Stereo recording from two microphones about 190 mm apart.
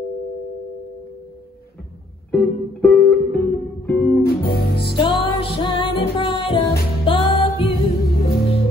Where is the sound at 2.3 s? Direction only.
5° left (ahead or behind).